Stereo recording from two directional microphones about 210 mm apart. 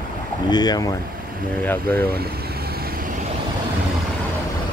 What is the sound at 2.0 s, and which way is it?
Vehicle, 45° right (ahead or behind).